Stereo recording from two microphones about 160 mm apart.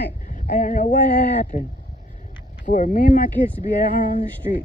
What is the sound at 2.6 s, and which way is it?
Speech, 50° left (ahead or behind).